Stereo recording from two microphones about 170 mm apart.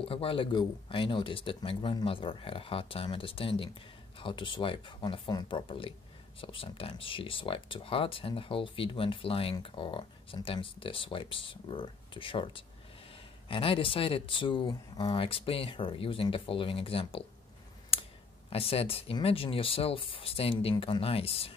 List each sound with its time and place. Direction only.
0.0 s speech: 35° left (ahead or behind)
18.5 s speech: 35° left (ahead or behind)